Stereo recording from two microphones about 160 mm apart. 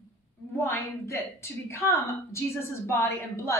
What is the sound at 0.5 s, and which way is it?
A woman's voice, 15° left (ahead or behind).